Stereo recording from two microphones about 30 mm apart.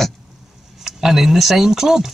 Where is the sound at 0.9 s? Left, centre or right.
Centre.